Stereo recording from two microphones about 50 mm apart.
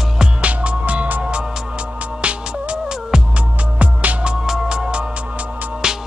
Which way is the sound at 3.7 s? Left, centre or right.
Right.